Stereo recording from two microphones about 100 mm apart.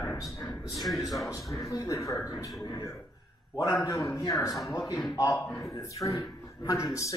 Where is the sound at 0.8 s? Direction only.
Centre (ahead or behind).